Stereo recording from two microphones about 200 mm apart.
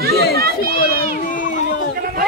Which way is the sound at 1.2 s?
40° left (ahead or behind).